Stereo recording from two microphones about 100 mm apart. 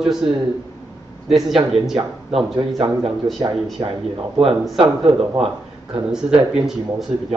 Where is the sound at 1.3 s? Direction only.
5° right (ahead or behind).